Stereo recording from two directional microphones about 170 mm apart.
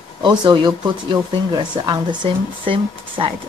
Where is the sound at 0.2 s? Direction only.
25° right (ahead or behind).